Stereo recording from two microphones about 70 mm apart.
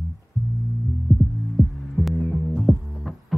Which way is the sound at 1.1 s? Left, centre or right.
Right.